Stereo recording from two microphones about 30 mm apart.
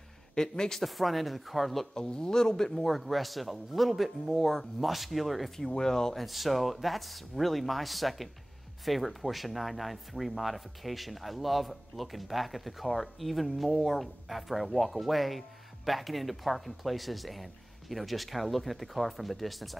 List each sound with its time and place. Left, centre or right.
0.3 s speech: left
0.8 s speech: centre
2.0 s speech: left
2.7 s speech: centre
5.8 s speech: centre
6.1 s speech: centre